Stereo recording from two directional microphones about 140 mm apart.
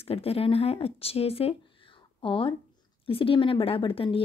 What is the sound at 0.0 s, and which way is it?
A woman's voice, 45° left (ahead or behind).